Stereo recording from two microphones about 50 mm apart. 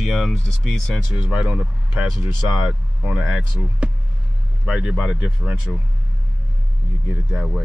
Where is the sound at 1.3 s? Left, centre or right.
Right.